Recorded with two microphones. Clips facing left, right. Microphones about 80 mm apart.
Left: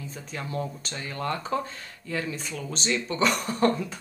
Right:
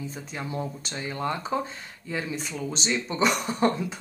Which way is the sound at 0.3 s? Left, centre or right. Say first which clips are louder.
Left 1 dB; centre.